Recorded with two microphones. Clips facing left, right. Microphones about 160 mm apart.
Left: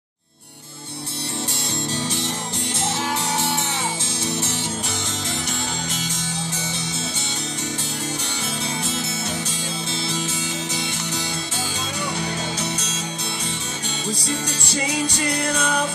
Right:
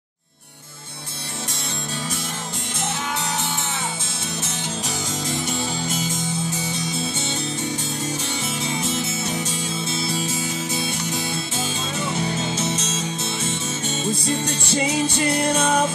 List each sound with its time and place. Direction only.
10.2 s music: 20° left (ahead or behind)
14.9 s music: 25° right (ahead or behind)